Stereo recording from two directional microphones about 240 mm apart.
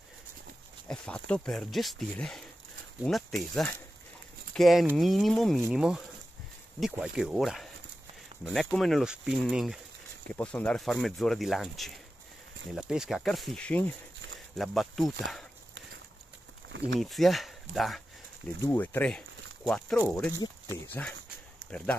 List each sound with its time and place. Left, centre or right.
0.8 s speech: centre
16.6 s a sound: right
17.0 s speech: centre